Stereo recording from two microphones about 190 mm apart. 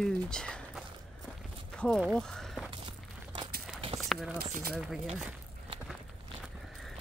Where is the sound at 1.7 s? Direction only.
5° left (ahead or behind).